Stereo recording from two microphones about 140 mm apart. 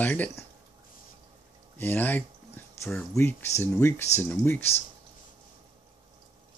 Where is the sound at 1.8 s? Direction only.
15° left (ahead or behind).